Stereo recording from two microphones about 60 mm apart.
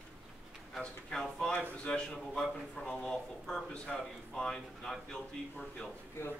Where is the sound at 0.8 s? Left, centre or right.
Centre.